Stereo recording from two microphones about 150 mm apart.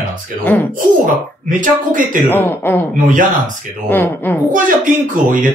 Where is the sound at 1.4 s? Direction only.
60° right (ahead or behind).